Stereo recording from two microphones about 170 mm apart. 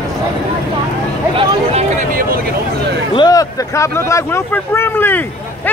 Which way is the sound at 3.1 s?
25° left (ahead or behind).